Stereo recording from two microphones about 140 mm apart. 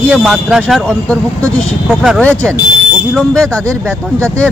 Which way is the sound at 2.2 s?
10° left (ahead or behind).